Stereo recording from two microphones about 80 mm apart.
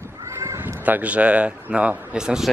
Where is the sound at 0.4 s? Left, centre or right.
Right.